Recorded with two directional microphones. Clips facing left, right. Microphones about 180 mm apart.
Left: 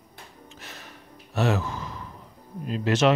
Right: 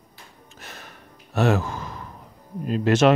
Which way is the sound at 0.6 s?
50° right (ahead or behind).